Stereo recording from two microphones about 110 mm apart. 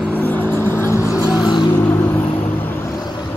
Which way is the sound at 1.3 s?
35° left (ahead or behind).